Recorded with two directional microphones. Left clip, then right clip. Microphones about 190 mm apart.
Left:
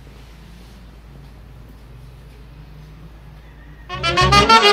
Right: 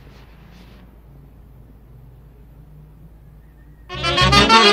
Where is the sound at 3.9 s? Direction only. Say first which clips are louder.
Left 1 dB; 5° left (ahead or behind).